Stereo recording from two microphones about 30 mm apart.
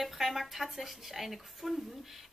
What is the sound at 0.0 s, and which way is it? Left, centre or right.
A woman's voice, centre.